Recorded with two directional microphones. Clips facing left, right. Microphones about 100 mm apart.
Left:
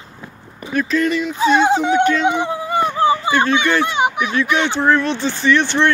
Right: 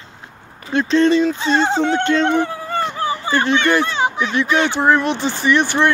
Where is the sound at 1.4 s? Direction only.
10° left (ahead or behind).